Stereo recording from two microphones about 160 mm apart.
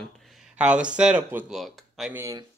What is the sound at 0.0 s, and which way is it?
Speech, centre (ahead or behind).